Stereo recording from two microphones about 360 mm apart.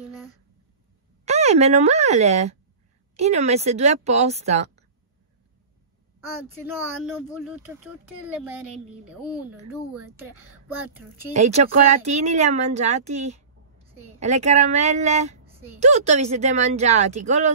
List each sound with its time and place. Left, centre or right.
1.2 s a woman's voice: centre
7.4 s speech: centre
9.9 s speech: centre
11.3 s speech: centre